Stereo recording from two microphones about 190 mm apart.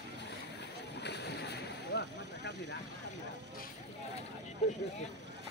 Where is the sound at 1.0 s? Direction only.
60° left (ahead or behind).